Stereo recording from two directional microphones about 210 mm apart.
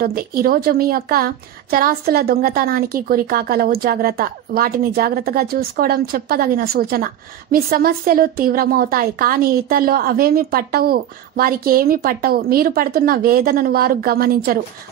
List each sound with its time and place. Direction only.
0.0 s a woman's voice: 45° right (ahead or behind)